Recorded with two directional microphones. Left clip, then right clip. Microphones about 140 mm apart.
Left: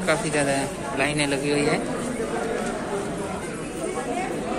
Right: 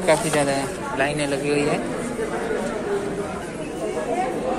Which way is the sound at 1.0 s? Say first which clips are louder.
Right 1 dB; 30° left (ahead or behind).